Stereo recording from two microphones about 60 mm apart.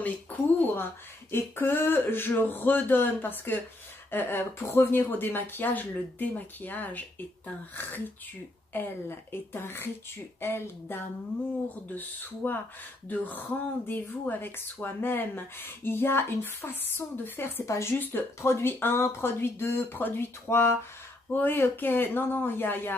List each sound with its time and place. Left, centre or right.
0.0 s a sound: left
1.3 s speech: left
17.6 s speech: left
17.9 s speech: left